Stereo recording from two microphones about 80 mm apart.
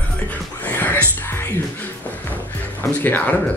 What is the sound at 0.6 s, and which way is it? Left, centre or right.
Speech, left.